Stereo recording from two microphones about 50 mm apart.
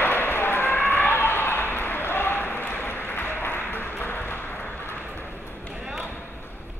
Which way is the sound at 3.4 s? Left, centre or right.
Left.